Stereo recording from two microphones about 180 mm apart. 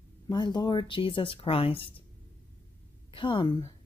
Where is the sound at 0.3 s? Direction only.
25° left (ahead or behind).